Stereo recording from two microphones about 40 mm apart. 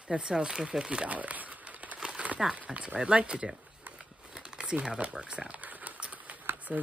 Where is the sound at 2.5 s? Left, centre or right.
Right.